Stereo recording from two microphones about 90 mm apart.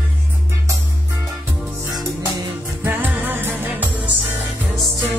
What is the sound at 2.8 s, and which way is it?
Music, 20° right (ahead or behind).